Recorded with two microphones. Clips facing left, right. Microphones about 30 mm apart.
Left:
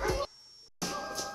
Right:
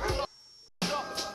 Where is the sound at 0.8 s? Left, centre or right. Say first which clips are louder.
Right 5 dB; right.